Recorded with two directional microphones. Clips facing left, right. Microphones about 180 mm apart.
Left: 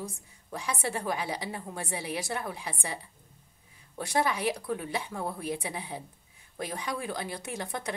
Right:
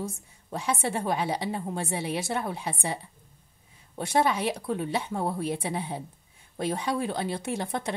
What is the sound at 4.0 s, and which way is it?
A woman's voice, 25° right (ahead or behind).